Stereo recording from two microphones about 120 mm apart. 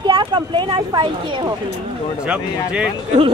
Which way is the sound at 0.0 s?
40° right (ahead or behind).